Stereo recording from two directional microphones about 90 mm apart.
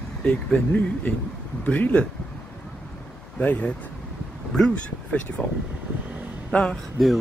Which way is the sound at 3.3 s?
15° left (ahead or behind).